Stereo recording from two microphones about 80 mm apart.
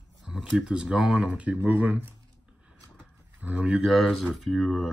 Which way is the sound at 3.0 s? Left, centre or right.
Centre.